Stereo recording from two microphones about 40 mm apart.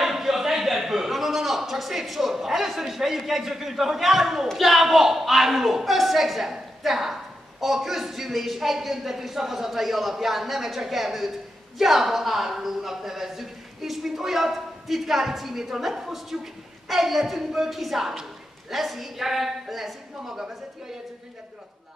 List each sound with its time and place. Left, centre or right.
0.0 s a man's voice: centre